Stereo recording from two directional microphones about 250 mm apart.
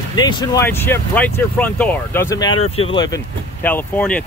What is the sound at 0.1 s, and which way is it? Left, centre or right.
Speech, centre.